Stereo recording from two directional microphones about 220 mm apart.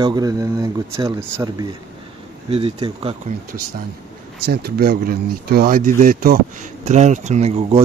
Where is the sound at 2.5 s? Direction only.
25° right (ahead or behind).